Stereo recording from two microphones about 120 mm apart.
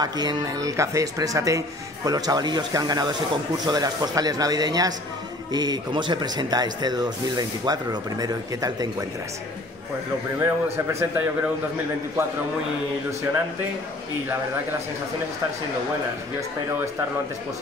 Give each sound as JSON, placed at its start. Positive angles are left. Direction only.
{"t": 0.0, "sound": "speech", "side_deg": -35}
{"t": 10.4, "sound": "speech", "side_deg": -20}